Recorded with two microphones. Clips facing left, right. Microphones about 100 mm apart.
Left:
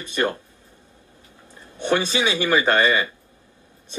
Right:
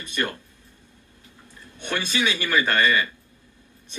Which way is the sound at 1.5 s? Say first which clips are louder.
Left 8 dB; 25° left (ahead or behind).